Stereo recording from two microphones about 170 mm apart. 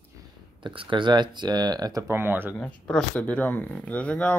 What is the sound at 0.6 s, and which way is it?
Speech, 30° right (ahead or behind).